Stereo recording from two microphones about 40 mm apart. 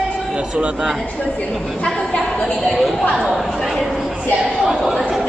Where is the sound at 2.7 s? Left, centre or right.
Centre.